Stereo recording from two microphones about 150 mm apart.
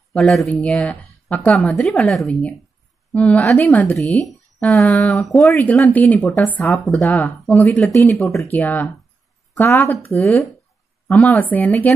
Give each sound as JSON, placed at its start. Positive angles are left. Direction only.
{"t": 0.1, "sound": "a woman's voice", "side_deg": 0}
{"t": 6.8, "sound": "a woman's voice", "side_deg": 5}
{"t": 8.1, "sound": "speech", "side_deg": 15}